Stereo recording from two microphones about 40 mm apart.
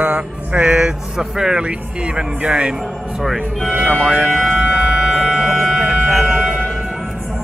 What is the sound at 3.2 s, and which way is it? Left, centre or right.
Speech, centre.